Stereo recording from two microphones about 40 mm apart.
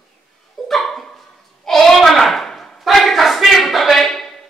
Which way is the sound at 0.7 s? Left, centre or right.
Centre.